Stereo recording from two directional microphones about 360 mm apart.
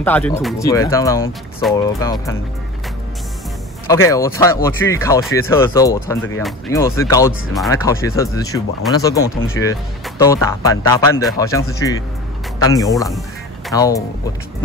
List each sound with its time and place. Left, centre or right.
0.0 s speech: centre
3.8 s speech: centre